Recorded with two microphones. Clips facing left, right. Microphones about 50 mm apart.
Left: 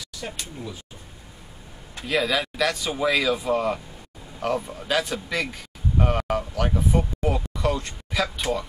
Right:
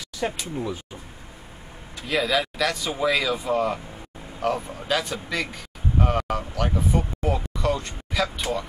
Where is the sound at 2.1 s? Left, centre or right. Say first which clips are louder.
Even; centre.